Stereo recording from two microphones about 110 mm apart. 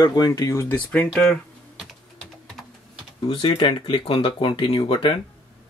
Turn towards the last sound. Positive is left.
turn(degrees=60)  # may be behind; listen again after turning